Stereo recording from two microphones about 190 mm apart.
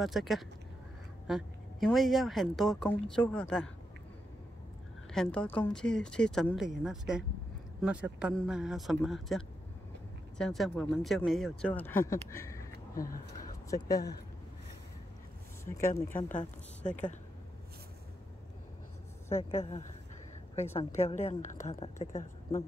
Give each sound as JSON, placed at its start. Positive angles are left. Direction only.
{"t": 0.0, "sound": "a woman's voice", "side_deg": 0}
{"t": 5.1, "sound": "a woman's voice", "side_deg": 5}
{"t": 12.9, "sound": "speech", "side_deg": 50}
{"t": 13.7, "sound": "speech", "side_deg": 20}
{"t": 15.6, "sound": "speech", "side_deg": 15}
{"t": 16.2, "sound": "a woman's voice", "side_deg": 40}
{"t": 19.2, "sound": "a woman's voice", "side_deg": 35}
{"t": 21.0, "sound": "a woman's voice", "side_deg": 35}